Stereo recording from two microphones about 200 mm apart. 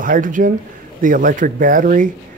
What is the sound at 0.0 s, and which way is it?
A man's voice, 45° right (ahead or behind).